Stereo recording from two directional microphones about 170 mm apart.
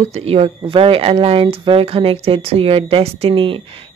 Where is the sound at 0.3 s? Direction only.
35° right (ahead or behind).